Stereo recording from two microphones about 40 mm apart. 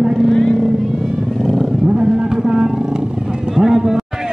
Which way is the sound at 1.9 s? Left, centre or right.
Right.